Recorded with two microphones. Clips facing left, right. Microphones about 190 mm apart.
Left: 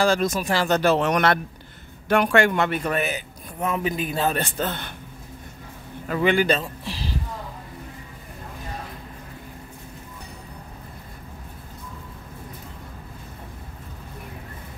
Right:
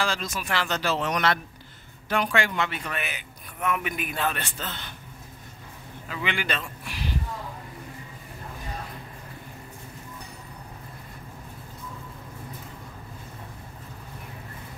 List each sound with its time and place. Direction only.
0.0 s a man's voice: 45° left (ahead or behind)
0.7 s a man's voice: 55° left (ahead or behind)
6.0 s speech: 45° left (ahead or behind); by 7.2 s 30° left (ahead or behind)